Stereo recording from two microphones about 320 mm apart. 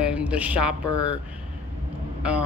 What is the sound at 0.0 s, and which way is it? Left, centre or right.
Speech, centre.